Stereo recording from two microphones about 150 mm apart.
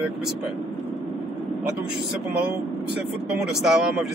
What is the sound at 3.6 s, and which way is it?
Speech, centre (ahead or behind).